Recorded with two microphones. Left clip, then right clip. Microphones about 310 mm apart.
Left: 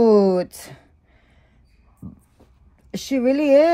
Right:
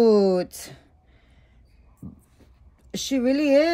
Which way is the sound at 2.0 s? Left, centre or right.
Left.